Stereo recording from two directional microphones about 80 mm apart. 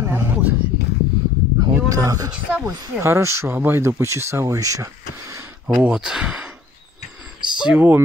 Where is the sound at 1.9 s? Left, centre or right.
Right.